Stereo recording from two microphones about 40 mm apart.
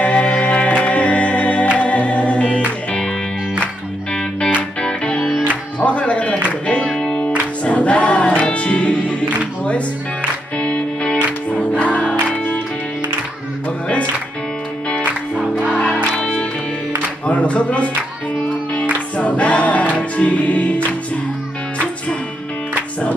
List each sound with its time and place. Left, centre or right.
0.0 s music: left
0.7 s music: left
4.8 s music: left
7.2 s music: left
10.6 s music: left
17.3 s music: left
18.9 s music: left